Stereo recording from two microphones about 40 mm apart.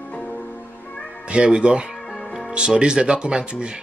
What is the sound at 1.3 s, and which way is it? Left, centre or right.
Speech, right.